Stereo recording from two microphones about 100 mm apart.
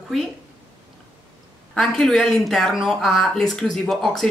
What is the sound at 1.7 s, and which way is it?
A woman's voice, 5° left (ahead or behind).